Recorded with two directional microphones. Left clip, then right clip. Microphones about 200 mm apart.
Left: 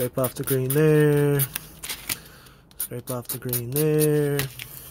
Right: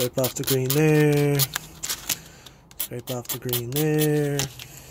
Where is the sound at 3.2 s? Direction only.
Centre (ahead or behind).